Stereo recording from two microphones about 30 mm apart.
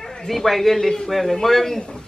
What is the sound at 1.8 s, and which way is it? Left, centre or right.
Speech, left.